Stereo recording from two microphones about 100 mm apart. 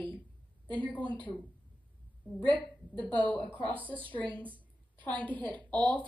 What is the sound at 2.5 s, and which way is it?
Speech, 50° left (ahead or behind).